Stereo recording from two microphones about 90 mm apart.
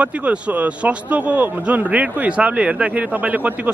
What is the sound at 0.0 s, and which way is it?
A man's voice, 15° right (ahead or behind).